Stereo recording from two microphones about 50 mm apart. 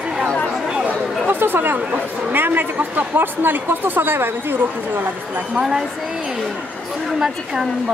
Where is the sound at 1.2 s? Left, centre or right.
Right.